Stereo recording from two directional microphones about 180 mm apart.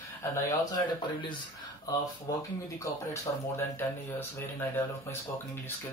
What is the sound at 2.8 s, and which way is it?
Speech, 15° left (ahead or behind).